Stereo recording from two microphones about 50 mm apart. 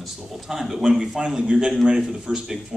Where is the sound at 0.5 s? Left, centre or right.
Centre.